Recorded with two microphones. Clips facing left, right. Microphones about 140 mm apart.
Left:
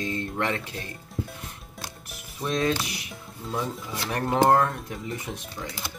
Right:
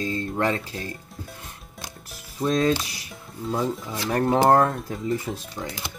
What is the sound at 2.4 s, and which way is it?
Speech, 30° right (ahead or behind).